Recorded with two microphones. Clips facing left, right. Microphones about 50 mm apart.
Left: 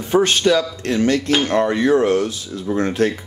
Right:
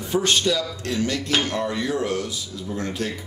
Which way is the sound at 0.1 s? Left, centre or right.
Left.